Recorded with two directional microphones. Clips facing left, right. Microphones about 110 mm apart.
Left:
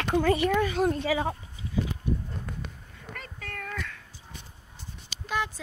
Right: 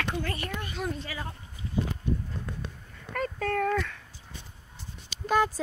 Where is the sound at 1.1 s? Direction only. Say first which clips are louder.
Left 11 dB; 90° left.